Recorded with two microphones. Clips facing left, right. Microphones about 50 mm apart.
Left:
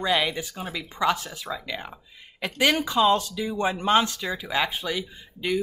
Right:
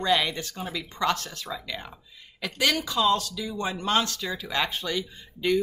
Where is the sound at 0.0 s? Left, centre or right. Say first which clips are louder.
Even; centre.